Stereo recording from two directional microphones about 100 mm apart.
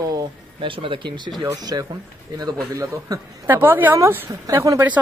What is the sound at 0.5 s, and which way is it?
Speech, 60° right (ahead or behind).